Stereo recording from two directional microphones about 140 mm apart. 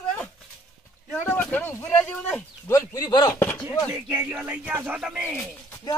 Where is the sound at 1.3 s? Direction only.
10° left (ahead or behind).